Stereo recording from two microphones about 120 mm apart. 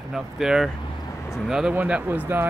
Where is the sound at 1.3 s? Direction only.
5° right (ahead or behind).